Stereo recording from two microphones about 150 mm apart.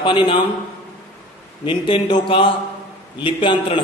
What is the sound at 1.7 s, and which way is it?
Mantra, 35° left (ahead or behind).